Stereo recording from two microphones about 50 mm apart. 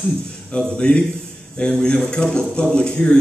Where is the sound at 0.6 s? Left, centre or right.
Centre.